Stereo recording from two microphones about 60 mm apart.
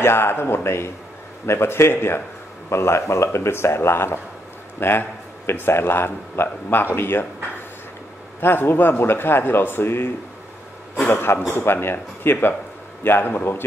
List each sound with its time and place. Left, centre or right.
0.0 s a man's voice: left
8.4 s speech: left
11.1 s speech: left